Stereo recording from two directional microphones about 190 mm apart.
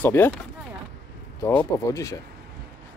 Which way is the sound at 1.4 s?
15° left (ahead or behind).